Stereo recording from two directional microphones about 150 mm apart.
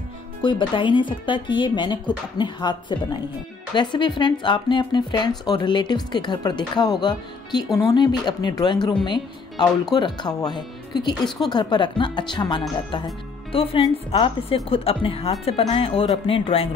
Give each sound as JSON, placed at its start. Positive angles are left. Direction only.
{"t": 0.4, "sound": "speech", "side_deg": 35}
{"t": 11.2, "sound": "a woman's voice", "side_deg": 0}
{"t": 11.5, "sound": "speech", "side_deg": 30}